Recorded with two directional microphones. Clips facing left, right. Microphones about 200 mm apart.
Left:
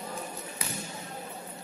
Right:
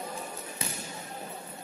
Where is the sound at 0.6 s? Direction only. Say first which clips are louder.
Right 1 dB; 25° right (ahead or behind).